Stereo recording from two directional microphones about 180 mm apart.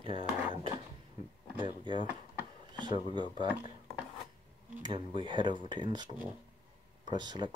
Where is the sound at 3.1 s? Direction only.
25° right (ahead or behind).